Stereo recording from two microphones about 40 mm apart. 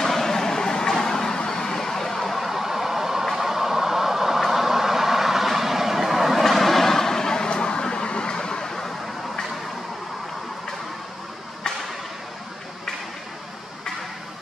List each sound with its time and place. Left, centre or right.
0.0 s a sound: centre
1.0 s vehicle: centre
2.3 s vehicle: centre